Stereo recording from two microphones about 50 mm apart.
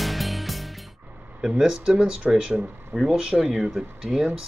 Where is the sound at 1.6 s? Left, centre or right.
Centre.